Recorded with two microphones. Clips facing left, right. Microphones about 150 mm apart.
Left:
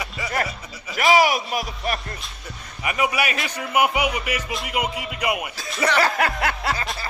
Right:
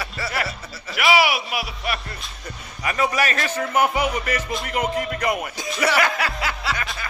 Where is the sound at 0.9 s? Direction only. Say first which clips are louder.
Left 2 dB; 40° left (ahead or behind).